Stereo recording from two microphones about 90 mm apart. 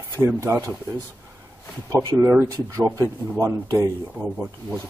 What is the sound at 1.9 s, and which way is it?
Speech, 35° right (ahead or behind).